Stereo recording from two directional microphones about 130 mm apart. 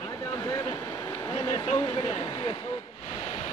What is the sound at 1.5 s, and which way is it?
Speech, 55° left (ahead or behind).